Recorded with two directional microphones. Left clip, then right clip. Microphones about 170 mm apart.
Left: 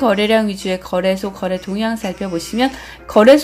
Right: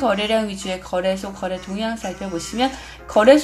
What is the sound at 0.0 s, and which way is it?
Speech, 25° left (ahead or behind).